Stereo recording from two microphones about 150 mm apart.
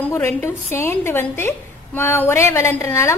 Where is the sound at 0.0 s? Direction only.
15° left (ahead or behind).